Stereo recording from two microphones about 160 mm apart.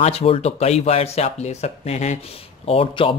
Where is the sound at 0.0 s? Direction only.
40° left (ahead or behind).